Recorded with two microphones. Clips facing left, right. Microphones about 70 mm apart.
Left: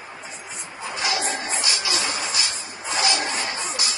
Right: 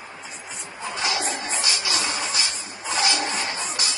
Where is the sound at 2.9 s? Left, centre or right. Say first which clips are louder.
Even; left.